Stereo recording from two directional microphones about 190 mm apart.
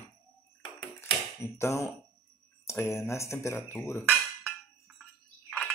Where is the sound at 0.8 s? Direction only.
10° left (ahead or behind).